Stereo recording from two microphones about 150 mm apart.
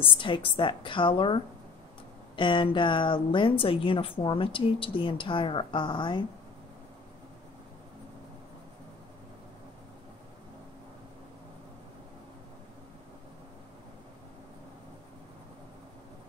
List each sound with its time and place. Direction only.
0.0 s speech: 35° left (ahead or behind)